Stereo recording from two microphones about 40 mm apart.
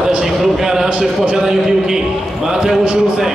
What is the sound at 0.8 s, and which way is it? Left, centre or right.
A man's voice, right.